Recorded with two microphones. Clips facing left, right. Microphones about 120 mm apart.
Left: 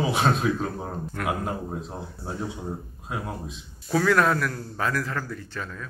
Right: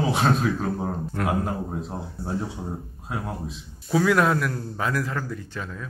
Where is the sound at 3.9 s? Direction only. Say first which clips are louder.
Right 1 dB; 15° right (ahead or behind).